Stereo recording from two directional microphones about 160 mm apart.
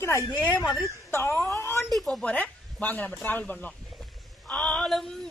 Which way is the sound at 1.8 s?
Centre (ahead or behind).